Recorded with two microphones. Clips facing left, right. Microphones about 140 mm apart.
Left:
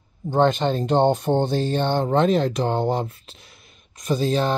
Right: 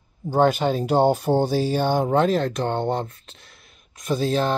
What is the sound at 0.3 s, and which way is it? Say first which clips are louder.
Speech: even; 10° right (ahead or behind).